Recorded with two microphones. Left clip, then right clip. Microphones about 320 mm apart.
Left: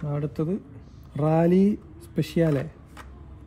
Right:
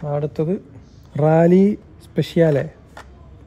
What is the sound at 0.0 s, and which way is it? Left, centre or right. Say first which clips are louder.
A man's voice: right 8 dB; right.